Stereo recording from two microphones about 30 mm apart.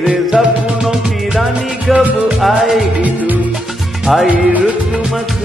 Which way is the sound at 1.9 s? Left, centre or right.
Right.